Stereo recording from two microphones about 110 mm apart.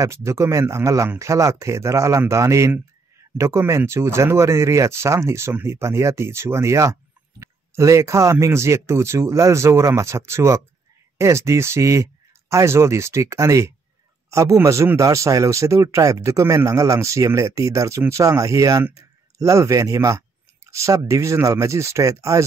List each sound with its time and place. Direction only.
0.0 s speech: 25° right (ahead or behind)